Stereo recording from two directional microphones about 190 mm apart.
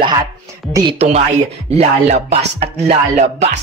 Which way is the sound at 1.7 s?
35° right (ahead or behind).